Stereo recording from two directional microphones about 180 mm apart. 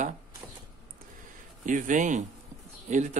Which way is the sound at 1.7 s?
45° right (ahead or behind).